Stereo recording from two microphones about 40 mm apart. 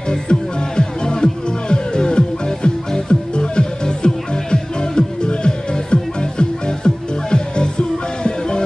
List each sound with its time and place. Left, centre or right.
0.1 s music: left